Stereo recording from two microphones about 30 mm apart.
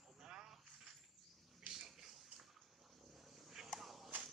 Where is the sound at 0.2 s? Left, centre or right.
Right.